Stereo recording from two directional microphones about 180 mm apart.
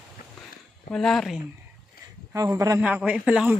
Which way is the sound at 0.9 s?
Centre (ahead or behind).